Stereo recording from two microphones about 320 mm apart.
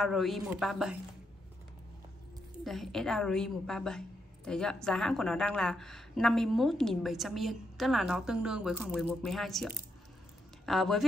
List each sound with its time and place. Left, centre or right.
0.0 s a woman's voice: centre
2.6 s a woman's voice: centre